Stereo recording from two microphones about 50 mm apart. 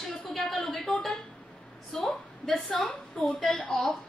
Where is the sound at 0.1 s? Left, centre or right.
Centre.